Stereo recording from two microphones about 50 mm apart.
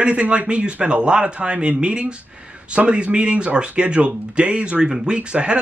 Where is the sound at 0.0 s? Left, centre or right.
Right.